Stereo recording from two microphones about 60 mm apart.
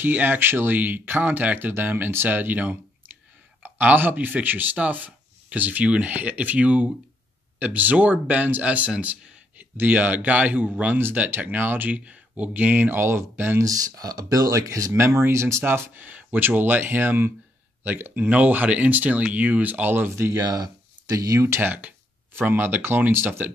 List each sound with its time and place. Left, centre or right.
0.0 s speech: right
11.0 s speech: right
12.0 s speech: right
13.6 s speech: right
14.9 s speech: right
16.0 s speech: right
21.1 s speech: right
21.5 s speech: right